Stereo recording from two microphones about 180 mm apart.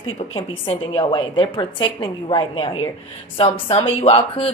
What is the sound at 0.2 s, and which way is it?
A woman's voice, 30° left (ahead or behind).